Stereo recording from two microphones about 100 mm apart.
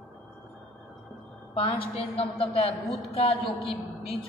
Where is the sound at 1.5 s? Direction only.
70° left (ahead or behind); by 3.4 s 85° left.